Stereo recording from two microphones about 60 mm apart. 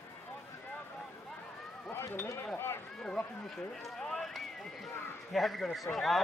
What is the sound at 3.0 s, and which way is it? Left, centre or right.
Speech, centre.